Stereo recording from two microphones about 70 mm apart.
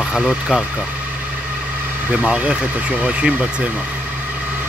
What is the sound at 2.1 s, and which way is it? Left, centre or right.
Speech, centre.